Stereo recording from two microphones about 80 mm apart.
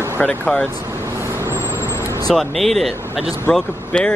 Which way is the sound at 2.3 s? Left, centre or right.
Centre.